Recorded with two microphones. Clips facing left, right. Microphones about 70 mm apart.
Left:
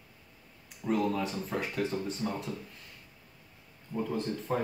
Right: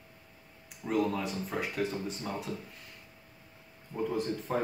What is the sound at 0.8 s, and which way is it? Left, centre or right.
Speech, centre.